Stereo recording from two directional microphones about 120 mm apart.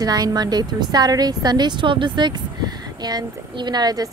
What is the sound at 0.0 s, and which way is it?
A woman's voice, 30° right (ahead or behind).